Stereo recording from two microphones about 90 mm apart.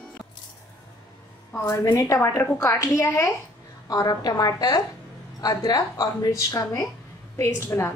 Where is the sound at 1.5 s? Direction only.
30° left (ahead or behind).